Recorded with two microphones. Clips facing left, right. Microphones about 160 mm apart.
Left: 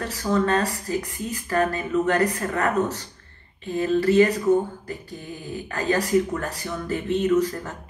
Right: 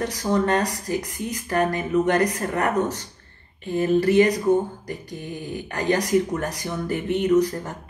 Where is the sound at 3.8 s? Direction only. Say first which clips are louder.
Even; 15° right (ahead or behind).